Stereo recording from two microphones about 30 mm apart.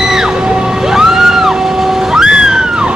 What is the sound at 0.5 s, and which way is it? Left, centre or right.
Vehicle, right.